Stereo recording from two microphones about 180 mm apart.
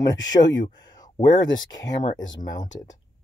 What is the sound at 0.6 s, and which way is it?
Speech, 20° left (ahead or behind).